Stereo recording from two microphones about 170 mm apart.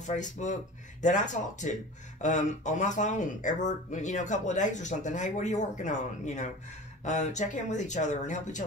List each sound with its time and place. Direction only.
0.0 s speech: 45° left (ahead or behind)